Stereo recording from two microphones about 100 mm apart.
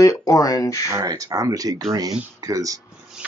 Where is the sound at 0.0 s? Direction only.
35° left (ahead or behind).